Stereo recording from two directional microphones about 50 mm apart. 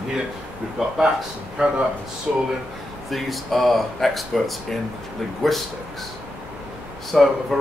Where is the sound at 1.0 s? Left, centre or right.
Centre.